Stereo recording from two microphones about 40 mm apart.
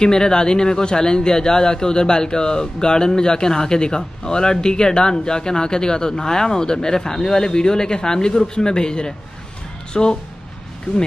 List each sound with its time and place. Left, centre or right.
0.0 s a man's voice: centre